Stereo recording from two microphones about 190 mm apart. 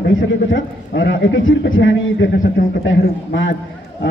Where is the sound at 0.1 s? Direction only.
85° left.